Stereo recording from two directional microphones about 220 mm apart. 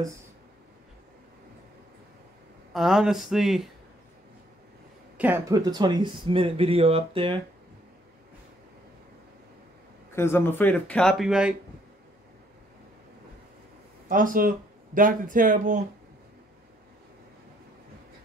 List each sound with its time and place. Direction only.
2.7 s speech: centre (ahead or behind)
5.1 s speech: 10° right (ahead or behind); by 7.3 s 25° right (ahead or behind)
10.1 s speech: 10° left (ahead or behind)
14.0 s speech: 40° right (ahead or behind)